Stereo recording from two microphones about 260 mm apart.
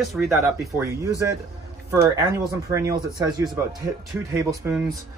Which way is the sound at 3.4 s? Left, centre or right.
Centre.